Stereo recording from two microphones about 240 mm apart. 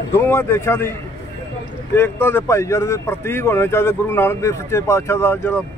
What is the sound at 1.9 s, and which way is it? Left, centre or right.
Speech, centre.